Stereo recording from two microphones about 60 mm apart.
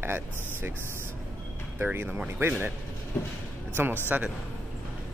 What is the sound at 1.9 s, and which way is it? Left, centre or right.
Speech, right.